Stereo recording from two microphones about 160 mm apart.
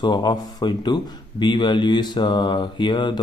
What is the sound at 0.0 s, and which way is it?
A man's voice, 30° left (ahead or behind).